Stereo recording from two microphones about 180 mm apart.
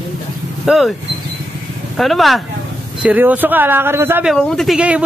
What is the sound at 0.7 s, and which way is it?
Speech, centre (ahead or behind).